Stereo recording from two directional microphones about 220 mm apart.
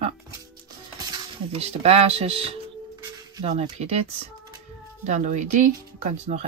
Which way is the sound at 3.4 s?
30° right (ahead or behind).